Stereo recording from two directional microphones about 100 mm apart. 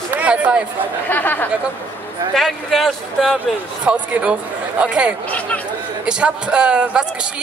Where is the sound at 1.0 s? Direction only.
20° left (ahead or behind).